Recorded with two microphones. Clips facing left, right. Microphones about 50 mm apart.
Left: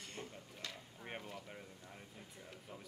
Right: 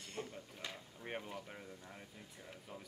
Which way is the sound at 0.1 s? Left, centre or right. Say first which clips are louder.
Right 7 dB; centre.